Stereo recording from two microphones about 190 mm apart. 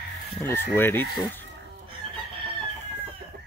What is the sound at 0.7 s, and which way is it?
Speech, 10° left (ahead or behind).